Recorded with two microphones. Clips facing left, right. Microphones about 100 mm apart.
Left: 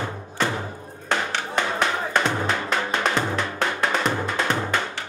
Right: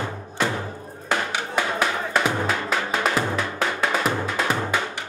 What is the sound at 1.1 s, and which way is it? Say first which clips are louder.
Drum: even; 5° right (ahead or behind).